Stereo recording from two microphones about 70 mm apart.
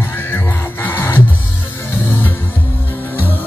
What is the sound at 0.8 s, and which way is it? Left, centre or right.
Music, left.